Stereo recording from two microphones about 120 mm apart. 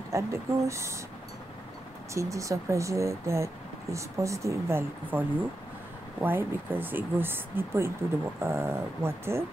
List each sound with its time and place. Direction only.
0.1 s speech: 25° right (ahead or behind)
2.1 s speech: 25° right (ahead or behind)
6.2 s speech: 15° right (ahead or behind)